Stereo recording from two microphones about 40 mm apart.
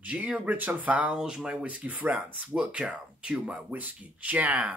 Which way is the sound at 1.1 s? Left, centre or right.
Centre.